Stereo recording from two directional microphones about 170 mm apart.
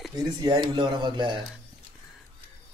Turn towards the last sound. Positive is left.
turn(degrees=-25)  # may be behind; listen again after turning